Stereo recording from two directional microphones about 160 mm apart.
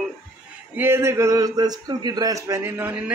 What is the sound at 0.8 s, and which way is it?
A man's voice, 15° right (ahead or behind).